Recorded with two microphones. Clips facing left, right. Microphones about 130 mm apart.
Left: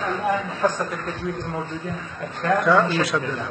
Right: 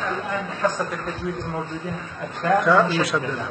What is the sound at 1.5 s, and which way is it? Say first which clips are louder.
Speech: even; 25° right (ahead or behind).